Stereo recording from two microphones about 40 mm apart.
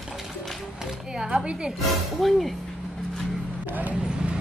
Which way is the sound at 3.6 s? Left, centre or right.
Right.